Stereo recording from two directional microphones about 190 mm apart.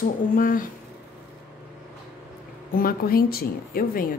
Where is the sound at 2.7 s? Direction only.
50° left (ahead or behind).